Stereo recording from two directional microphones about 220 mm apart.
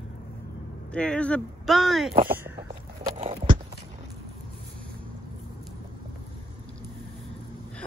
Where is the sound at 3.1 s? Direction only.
25° right (ahead or behind).